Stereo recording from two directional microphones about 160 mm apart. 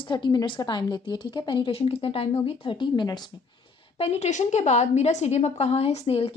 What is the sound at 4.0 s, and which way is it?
A woman's voice, 45° left (ahead or behind).